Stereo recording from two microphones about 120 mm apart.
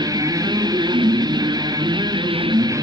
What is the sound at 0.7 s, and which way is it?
Music, 35° right (ahead or behind).